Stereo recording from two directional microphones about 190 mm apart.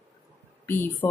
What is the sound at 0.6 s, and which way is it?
Speech, 10° left (ahead or behind).